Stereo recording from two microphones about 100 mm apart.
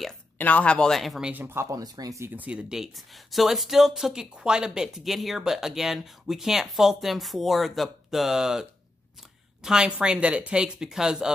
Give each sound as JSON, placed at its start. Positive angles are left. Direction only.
{"t": 0.4, "sound": "speech", "side_deg": 15}
{"t": 1.3, "sound": "speech", "side_deg": -20}
{"t": 1.8, "sound": "speech", "side_deg": -35}
{"t": 2.2, "sound": "speech", "side_deg": -15}
{"t": 2.7, "sound": "speech", "side_deg": 0}